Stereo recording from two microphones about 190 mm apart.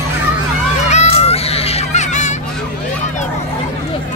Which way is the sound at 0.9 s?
35° left (ahead or behind).